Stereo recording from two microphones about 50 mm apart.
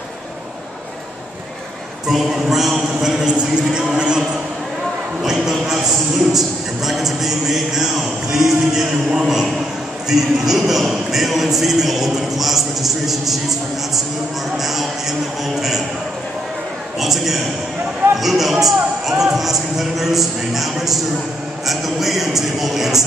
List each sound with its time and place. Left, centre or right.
2.0 s speech: centre
5.2 s a man's voice: centre
17.0 s a man's voice: centre